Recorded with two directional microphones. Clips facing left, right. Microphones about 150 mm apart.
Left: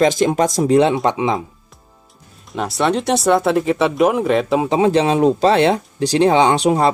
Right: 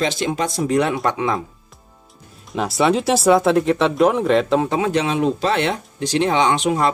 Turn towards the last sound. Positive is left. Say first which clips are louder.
# left 3 dB
turn(degrees=35)  # may be behind; listen again after turning